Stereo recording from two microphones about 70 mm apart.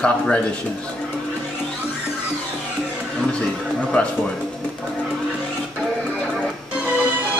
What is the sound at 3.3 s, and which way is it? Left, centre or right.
Speech, centre.